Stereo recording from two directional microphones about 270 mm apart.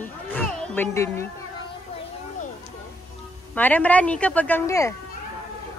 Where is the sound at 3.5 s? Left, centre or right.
Centre.